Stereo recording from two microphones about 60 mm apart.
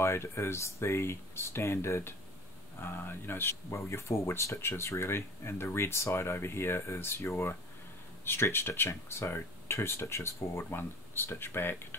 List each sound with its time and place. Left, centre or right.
0.0 s speech: left